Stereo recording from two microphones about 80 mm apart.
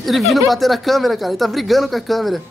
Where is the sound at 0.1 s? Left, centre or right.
Centre.